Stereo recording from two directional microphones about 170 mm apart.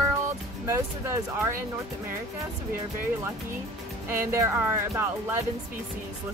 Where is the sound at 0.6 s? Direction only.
15° right (ahead or behind).